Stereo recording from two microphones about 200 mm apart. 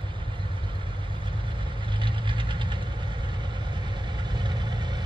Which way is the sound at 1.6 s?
25° right (ahead or behind).